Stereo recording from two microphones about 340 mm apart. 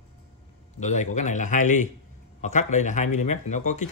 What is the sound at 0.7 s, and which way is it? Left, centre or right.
Speech, left.